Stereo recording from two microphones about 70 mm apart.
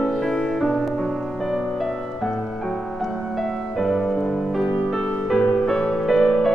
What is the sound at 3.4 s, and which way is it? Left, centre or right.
Music, centre.